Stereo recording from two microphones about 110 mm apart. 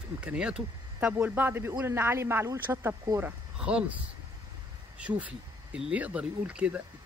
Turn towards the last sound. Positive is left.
turn(degrees=-10)  # may be behind; listen again after turning